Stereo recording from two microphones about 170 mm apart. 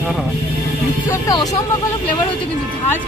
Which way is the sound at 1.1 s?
20° left (ahead or behind).